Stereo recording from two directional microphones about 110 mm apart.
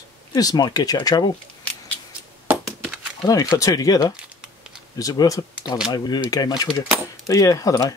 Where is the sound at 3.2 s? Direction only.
35° left (ahead or behind).